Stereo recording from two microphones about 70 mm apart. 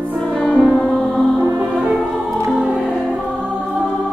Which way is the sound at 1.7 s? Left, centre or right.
Centre.